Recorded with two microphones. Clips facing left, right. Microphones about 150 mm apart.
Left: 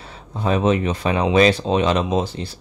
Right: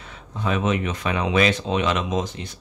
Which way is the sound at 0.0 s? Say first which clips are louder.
Left 4 dB; 35° left (ahead or behind).